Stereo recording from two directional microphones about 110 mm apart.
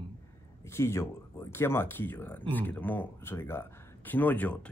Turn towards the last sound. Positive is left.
turn(degrees=15)  # may be behind; listen again after turning